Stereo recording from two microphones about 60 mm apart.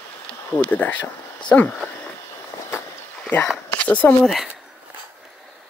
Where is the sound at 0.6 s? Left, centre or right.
Left.